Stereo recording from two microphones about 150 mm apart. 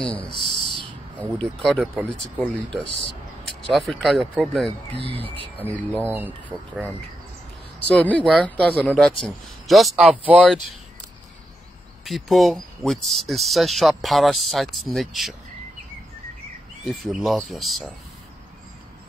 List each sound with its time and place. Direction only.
0.0 s a sound: 35° left (ahead or behind)
1.2 s speech: 5° left (ahead or behind)
3.7 s speech: centre (ahead or behind)
5.6 s speech: 10° left (ahead or behind)
6.1 s speech: 10° right (ahead or behind)
7.9 s speech: 10° left (ahead or behind)
12.0 s speech: centre (ahead or behind)
16.8 s speech: centre (ahead or behind)